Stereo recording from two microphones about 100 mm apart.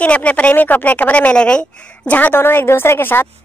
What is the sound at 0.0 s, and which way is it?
A woman's voice, 15° left (ahead or behind).